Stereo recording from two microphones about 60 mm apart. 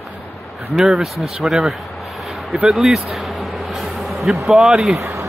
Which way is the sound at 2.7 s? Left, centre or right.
Centre.